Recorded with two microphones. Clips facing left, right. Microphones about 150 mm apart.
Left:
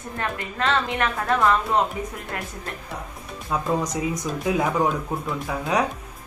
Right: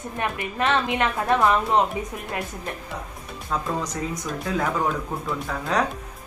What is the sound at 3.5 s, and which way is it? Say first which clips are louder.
Speech: left 3 dB; 15° left (ahead or behind).